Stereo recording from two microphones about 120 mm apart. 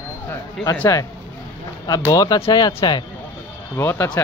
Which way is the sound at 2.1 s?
30° left (ahead or behind).